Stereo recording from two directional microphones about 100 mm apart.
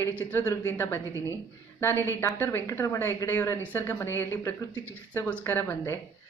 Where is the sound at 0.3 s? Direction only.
20° left (ahead or behind).